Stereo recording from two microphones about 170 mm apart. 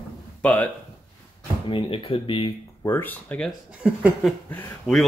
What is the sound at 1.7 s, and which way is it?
Speech, 30° left (ahead or behind).